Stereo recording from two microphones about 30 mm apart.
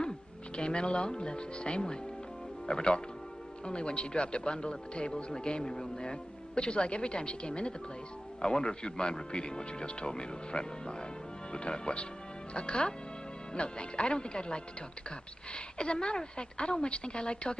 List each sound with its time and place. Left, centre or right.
0.6 s speech: left